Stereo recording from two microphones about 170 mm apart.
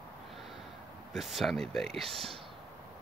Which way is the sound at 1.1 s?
Centre (ahead or behind).